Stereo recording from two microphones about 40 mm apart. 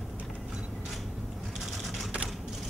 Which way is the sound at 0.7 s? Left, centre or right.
Centre.